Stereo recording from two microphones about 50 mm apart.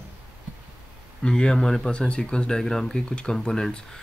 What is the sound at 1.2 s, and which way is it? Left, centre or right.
Speech, centre.